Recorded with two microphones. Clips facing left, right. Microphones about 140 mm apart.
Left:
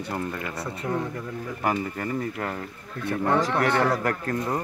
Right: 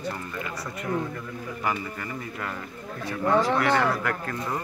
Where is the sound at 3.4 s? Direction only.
40° left (ahead or behind).